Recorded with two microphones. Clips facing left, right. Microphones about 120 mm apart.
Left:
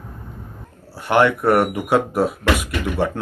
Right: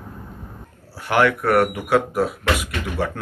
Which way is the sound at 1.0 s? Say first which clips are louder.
Left 2 dB; 20° left (ahead or behind).